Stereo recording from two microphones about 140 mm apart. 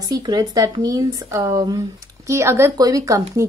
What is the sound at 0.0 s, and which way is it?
Speech, 25° right (ahead or behind).